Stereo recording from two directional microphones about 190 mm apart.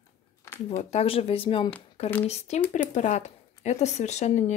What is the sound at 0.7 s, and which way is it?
Speech, 30° left (ahead or behind).